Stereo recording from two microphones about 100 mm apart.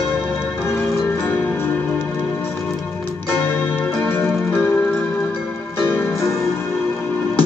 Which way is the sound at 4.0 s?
20° left (ahead or behind).